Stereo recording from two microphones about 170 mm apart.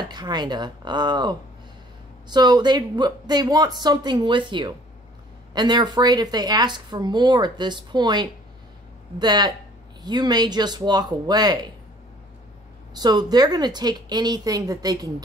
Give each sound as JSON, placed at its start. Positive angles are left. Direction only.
{"t": 0.1, "sound": "speech", "side_deg": -25}
{"t": 12.9, "sound": "speech", "side_deg": -25}